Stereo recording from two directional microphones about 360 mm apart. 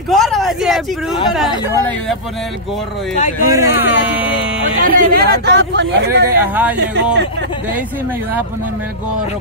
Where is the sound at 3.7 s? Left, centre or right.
Left.